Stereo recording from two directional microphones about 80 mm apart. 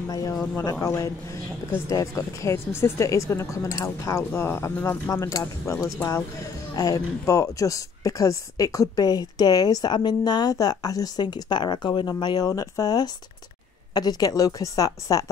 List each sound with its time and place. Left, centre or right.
0.1 s a woman's voice: left
5.2 s a woman's voice: left